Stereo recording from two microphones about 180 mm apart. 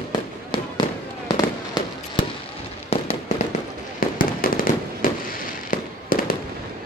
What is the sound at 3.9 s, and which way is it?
Fireworks, 50° left (ahead or behind).